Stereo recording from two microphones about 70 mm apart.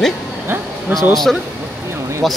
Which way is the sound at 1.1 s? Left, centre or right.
Centre.